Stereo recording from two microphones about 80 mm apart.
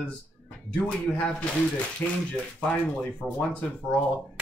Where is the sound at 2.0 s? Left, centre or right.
Left.